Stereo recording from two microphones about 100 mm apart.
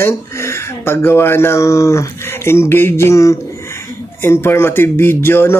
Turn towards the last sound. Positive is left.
turn(degrees=25)  # may be behind; listen again after turning